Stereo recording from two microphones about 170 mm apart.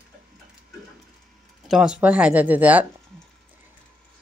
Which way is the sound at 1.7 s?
5° right (ahead or behind).